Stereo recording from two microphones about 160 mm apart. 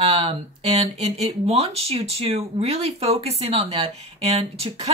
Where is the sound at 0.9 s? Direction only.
40° right (ahead or behind).